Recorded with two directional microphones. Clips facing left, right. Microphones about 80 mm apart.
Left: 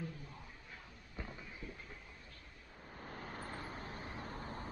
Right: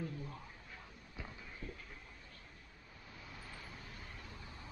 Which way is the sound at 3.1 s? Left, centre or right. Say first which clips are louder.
Left 7 dB; left.